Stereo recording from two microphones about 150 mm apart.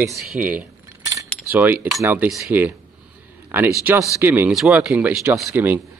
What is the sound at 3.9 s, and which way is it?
Speech, 10° right (ahead or behind).